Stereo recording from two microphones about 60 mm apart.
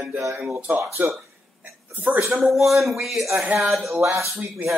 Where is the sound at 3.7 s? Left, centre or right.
Centre.